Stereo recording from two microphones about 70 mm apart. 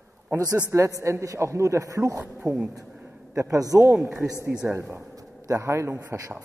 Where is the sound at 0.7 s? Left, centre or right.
Right.